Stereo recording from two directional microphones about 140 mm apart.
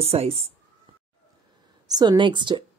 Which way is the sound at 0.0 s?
45° right (ahead or behind).